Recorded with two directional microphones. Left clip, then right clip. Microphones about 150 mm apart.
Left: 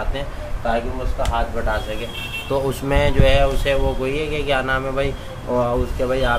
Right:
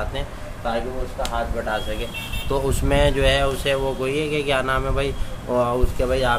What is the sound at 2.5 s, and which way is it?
Speech, 15° right (ahead or behind).